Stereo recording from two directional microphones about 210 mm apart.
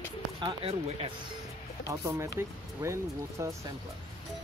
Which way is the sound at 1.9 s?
15° right (ahead or behind).